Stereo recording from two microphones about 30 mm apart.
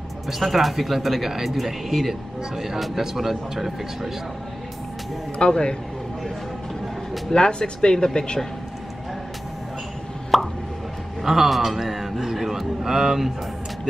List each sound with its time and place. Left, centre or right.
0.3 s speech: centre
5.4 s speech: left
7.3 s speech: left
10.3 s plop: centre
11.2 s speech: centre